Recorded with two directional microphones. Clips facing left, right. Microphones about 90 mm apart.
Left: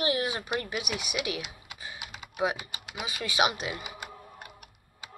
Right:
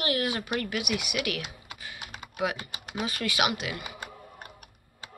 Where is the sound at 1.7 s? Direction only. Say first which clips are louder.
Even; 25° left (ahead or behind).